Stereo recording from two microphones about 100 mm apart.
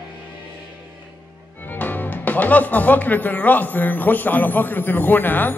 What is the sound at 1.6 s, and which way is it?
Speech, 20° left (ahead or behind).